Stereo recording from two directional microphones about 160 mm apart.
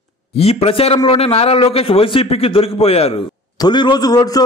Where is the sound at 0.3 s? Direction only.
40° left (ahead or behind).